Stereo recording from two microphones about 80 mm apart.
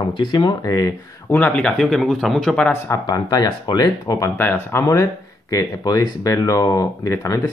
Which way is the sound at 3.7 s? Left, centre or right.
Left.